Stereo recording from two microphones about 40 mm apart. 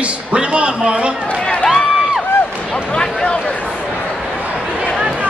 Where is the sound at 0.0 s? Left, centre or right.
Right.